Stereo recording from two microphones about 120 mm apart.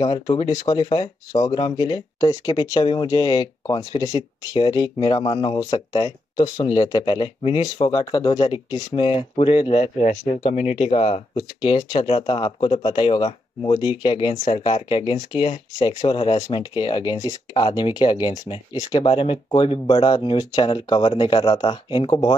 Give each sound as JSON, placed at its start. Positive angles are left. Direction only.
{"t": 0.0, "sound": "speech", "side_deg": 40}
{"t": 5.6, "sound": "speech", "side_deg": 30}
{"t": 11.3, "sound": "speech", "side_deg": 40}
{"t": 17.1, "sound": "speech", "side_deg": 30}